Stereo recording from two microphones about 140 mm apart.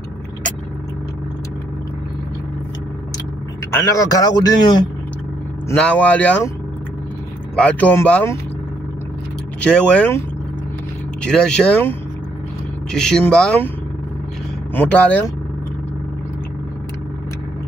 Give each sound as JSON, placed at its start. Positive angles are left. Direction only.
{"t": 3.7, "sound": "speech", "side_deg": 25}
{"t": 5.8, "sound": "speech", "side_deg": 10}
{"t": 7.5, "sound": "speech", "side_deg": 10}
{"t": 9.6, "sound": "speech", "side_deg": 5}
{"t": 11.2, "sound": "speech", "side_deg": 5}
{"t": 12.9, "sound": "speech", "side_deg": 5}
{"t": 14.7, "sound": "speech", "side_deg": 10}